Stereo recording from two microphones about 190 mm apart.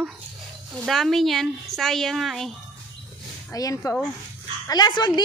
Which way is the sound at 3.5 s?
20° left (ahead or behind).